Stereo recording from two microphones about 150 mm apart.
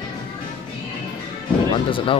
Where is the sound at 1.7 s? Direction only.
35° left (ahead or behind).